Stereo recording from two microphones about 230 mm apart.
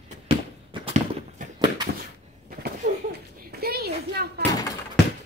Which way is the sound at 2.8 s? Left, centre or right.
Right.